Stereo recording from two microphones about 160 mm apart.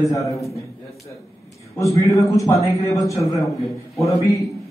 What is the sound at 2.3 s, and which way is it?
A man's voice, 20° left (ahead or behind).